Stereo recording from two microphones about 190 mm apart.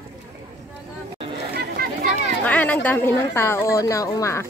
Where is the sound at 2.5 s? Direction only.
10° left (ahead or behind).